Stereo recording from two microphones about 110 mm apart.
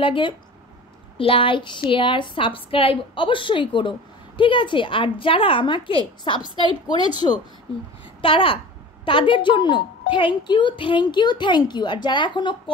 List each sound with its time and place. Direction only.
0.0 s speech: 50° left (ahead or behind)